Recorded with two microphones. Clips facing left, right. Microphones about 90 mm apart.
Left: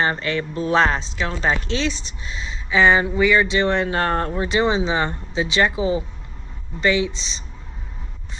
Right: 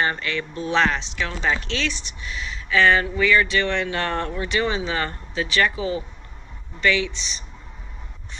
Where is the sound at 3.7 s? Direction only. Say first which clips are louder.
Left 4 dB; 35° left (ahead or behind).